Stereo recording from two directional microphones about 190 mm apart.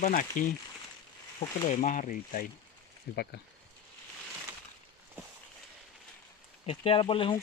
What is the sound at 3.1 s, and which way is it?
Speech, 55° left (ahead or behind).